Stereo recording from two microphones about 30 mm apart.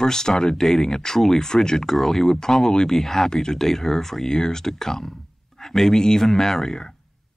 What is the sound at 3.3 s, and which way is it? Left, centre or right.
Speech, left.